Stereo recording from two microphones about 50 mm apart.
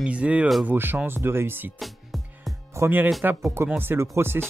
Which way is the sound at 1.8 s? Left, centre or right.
Centre.